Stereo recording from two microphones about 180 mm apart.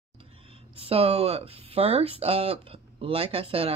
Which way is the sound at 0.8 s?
35° right (ahead or behind).